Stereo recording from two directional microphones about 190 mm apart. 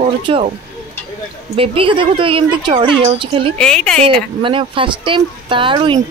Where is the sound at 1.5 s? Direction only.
25° right (ahead or behind).